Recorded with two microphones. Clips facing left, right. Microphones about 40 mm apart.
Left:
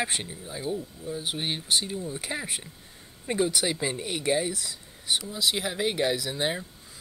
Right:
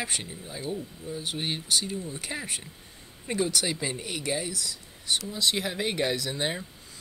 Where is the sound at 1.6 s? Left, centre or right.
Left.